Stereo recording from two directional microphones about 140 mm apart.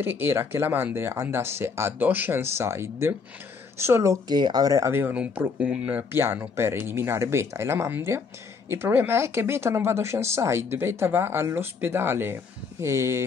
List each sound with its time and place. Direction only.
0.0 s speech: 15° right (ahead or behind)